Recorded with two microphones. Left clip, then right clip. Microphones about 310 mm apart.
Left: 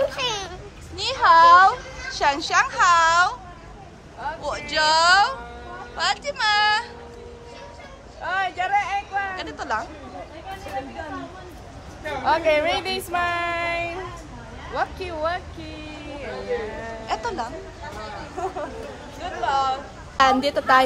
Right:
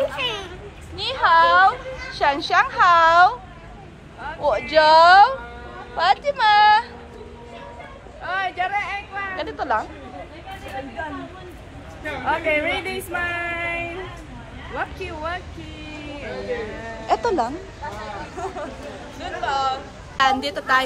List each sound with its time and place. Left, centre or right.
0.0 s a sound: left; by 3.3 s centre
4.4 s speech: centre
8.2 s vehicle: left
9.4 s speech: centre
12.3 s speech: left
14.8 s speech: left
17.1 s a woman's voice: centre
19.2 s speech: left
20.2 s a woman's voice: centre